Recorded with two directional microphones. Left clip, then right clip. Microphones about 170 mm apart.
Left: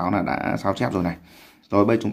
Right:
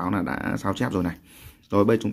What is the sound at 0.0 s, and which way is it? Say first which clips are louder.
Speech: left 4 dB; 25° right (ahead or behind).